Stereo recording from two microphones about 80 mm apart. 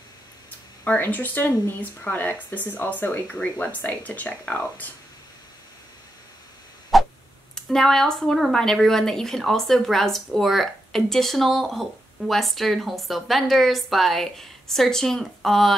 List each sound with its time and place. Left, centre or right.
0.8 s speech: left
6.9 s a sound: centre
7.5 s speech: centre